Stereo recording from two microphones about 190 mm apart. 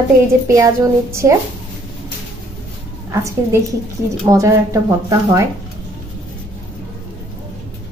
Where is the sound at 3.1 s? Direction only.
15° right (ahead or behind).